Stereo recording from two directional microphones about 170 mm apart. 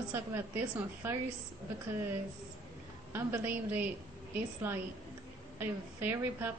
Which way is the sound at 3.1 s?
15° right (ahead or behind).